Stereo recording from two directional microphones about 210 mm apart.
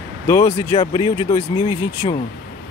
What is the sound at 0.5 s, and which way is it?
Speech, 25° left (ahead or behind).